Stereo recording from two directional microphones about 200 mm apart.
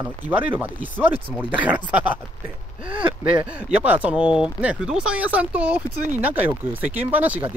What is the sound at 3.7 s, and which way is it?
Speech, 5° right (ahead or behind).